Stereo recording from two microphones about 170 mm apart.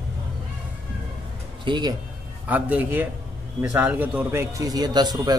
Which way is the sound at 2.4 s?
10° right (ahead or behind).